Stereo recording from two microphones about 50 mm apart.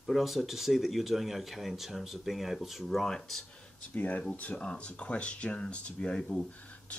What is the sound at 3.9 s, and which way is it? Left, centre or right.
Speech, left.